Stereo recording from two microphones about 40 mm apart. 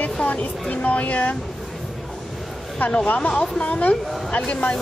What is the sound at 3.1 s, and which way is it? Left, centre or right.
Speech, left.